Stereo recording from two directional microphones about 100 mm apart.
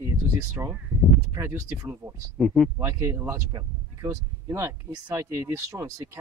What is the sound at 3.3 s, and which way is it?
Speech, 40° right (ahead or behind).